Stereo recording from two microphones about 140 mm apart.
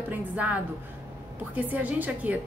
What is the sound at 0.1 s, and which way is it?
A woman's voice, 10° right (ahead or behind).